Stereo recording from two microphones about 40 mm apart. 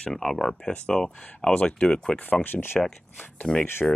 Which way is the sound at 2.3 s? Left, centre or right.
Left.